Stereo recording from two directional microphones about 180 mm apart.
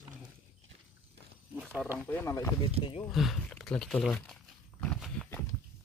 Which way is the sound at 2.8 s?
30° left (ahead or behind).